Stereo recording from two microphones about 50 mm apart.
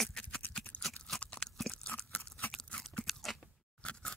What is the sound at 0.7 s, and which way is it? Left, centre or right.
Crunch, left.